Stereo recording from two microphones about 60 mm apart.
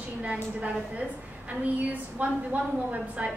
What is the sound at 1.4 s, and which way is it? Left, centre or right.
A woman's voice, right.